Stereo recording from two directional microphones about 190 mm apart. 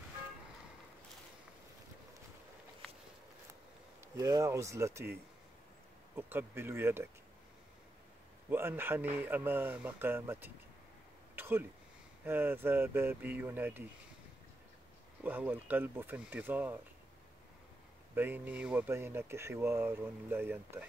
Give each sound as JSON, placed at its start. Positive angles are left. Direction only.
{"t": 4.1, "sound": "speech", "side_deg": -15}
{"t": 8.5, "sound": "speech", "side_deg": -10}
{"t": 11.3, "sound": "a sound", "side_deg": -10}
{"t": 12.3, "sound": "speech", "side_deg": -10}
{"t": 15.2, "sound": "speech", "side_deg": -10}
{"t": 18.1, "sound": "speech", "side_deg": -10}